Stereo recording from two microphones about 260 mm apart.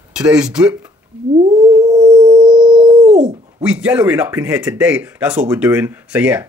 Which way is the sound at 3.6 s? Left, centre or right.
Centre.